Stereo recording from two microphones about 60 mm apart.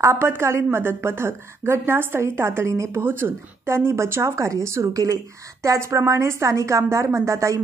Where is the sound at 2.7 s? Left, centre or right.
Right.